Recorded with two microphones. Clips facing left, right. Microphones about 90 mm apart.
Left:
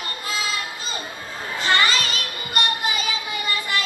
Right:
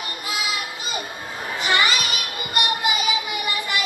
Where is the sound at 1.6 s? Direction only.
15° right (ahead or behind).